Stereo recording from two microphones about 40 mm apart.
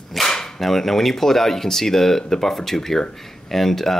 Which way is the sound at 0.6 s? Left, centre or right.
Centre.